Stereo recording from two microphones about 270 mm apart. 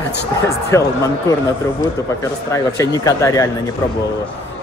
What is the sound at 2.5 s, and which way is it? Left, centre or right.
Speech, centre.